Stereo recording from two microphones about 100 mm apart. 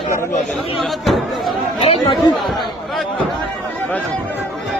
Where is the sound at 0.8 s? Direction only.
Centre (ahead or behind).